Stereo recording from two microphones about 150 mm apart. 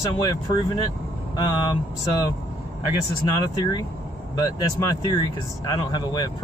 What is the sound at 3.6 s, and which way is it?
Speech, 30° left (ahead or behind).